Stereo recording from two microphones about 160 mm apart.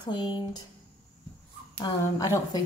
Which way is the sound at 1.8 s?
20° left (ahead or behind).